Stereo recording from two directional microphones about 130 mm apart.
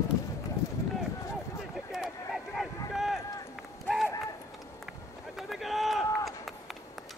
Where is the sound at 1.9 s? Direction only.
Centre (ahead or behind).